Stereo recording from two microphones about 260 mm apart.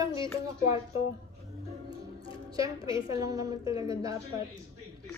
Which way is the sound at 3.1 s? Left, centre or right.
Centre.